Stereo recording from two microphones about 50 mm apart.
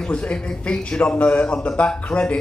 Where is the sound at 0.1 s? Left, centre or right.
Left.